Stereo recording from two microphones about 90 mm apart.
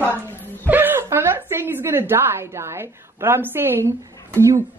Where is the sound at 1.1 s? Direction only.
25° right (ahead or behind).